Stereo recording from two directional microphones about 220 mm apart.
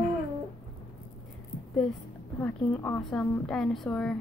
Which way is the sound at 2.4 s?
10° left (ahead or behind).